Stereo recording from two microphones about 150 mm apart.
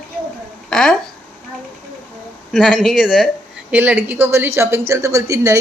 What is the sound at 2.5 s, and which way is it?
Speech, centre (ahead or behind).